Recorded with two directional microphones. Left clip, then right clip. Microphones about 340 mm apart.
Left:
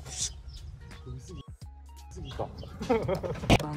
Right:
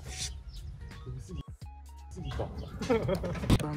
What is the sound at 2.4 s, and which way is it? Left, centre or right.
Bird, centre.